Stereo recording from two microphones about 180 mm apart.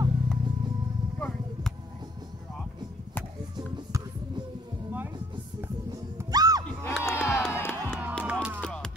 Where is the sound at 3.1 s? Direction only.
10° left (ahead or behind).